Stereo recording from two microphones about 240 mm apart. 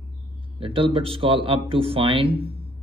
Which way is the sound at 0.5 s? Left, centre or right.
Right.